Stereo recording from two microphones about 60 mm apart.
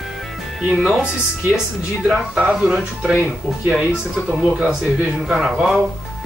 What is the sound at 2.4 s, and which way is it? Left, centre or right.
Speech, centre.